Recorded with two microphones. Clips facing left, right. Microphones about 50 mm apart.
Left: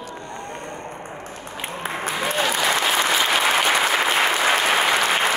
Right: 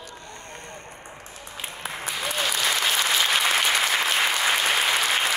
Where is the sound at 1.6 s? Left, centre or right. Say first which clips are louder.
Left 6 dB; left.